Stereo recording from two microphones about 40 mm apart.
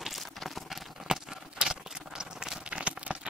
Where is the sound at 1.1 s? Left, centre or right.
Centre.